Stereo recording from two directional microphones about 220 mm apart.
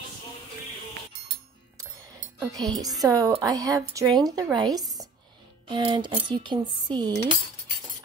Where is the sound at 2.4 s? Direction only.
15° right (ahead or behind).